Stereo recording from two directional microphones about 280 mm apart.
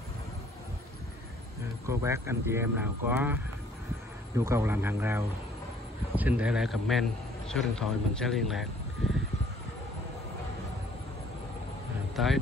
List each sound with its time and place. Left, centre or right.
1.6 s speech: centre
4.4 s a man's voice: centre
12.2 s a man's voice: centre